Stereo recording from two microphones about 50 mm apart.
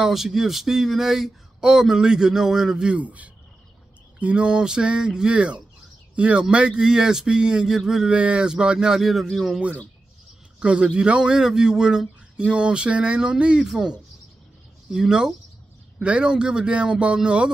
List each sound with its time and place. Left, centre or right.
0.0 s speech: centre
2.9 s a man's voice: right; by 8.1 s centre
8.1 s speech: right
9.0 s speech: centre
10.6 s a man's voice: right